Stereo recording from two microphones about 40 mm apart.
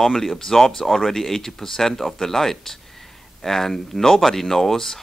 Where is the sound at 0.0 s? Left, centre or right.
Centre.